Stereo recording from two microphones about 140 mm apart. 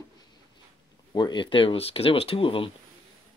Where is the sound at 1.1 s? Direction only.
35° left (ahead or behind).